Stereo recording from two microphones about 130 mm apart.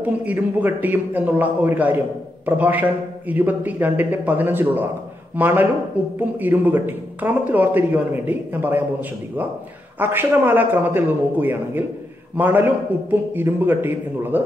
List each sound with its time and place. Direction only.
0.0 s speech: 10° right (ahead or behind)
9.9 s speech: 15° right (ahead or behind)